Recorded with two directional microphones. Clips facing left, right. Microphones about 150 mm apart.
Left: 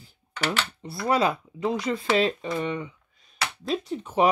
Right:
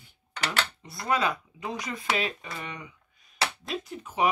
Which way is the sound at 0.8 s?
35° left (ahead or behind).